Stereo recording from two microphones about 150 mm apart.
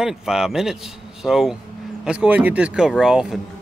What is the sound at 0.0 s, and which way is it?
A man's voice, 5° right (ahead or behind).